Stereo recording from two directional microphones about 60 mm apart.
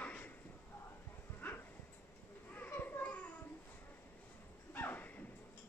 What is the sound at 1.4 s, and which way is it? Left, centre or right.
Dog, left.